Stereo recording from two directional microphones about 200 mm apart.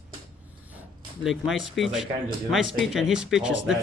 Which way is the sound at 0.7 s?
Centre (ahead or behind).